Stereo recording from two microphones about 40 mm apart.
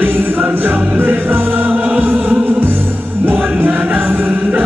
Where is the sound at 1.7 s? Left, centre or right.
Right.